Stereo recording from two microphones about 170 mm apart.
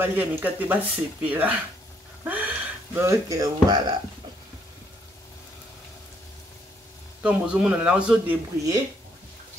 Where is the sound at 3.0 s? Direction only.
20° right (ahead or behind).